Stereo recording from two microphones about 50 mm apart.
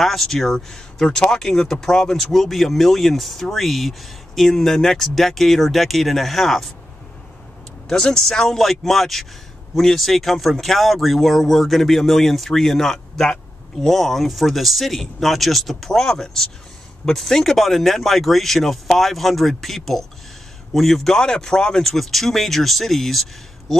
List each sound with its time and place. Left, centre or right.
0.0 s speech: centre
2.3 s speech: centre
7.9 s speech: centre